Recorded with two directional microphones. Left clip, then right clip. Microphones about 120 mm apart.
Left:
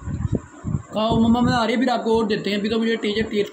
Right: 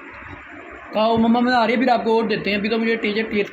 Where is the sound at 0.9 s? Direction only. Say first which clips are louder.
Right 3 dB; 20° left (ahead or behind).